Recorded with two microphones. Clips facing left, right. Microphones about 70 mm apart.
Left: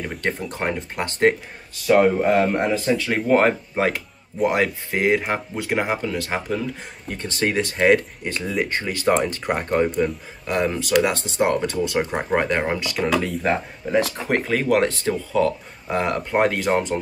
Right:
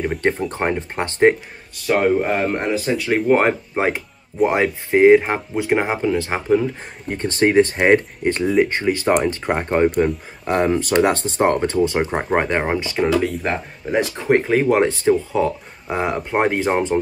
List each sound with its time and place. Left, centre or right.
0.0 s speech: right
1.9 s speech: centre; by 6.6 s right
7.2 s speech: right
9.9 s speech: right
10.5 s speech: right
13.2 s speech: centre
14.1 s speech: right